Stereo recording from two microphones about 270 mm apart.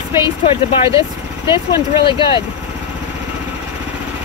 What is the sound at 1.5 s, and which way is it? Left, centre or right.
Speech, centre.